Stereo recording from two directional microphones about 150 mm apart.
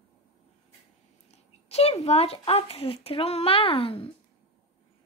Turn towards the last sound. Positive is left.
turn(degrees=40)  # may be behind; listen again after turning